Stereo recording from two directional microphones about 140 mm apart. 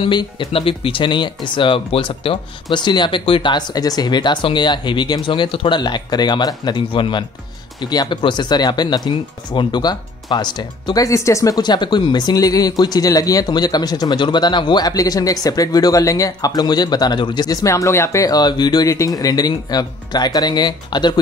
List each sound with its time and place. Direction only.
0.0 s speech: 35° left (ahead or behind)